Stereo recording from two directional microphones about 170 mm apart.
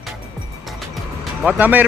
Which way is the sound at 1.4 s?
10° right (ahead or behind).